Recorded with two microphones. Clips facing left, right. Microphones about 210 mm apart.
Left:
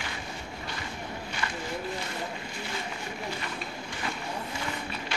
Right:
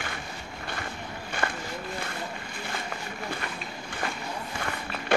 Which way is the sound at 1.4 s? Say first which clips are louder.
Right 5 dB; 55° right (ahead or behind).